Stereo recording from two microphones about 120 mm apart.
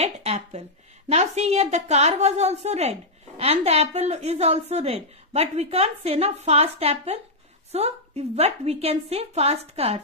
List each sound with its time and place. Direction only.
0.0 s a woman's voice: 60° right (ahead or behind)